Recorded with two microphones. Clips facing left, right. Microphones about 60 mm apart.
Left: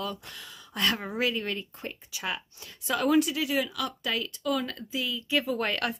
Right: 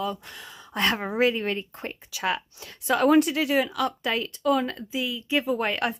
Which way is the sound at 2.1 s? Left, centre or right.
Right.